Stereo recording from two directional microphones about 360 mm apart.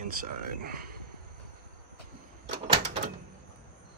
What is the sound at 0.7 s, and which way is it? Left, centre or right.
Speech, right.